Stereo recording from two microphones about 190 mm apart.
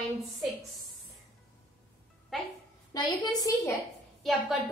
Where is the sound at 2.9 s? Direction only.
20° left (ahead or behind).